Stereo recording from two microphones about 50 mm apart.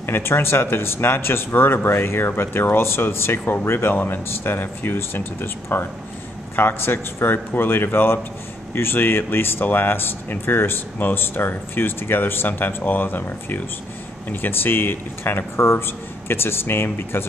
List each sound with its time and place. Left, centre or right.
0.0 s speech: left
15.5 s speech: left
15.8 s speech: left